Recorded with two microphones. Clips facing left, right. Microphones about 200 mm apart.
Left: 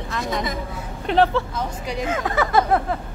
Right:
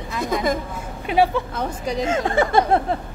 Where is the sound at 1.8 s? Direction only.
30° right (ahead or behind).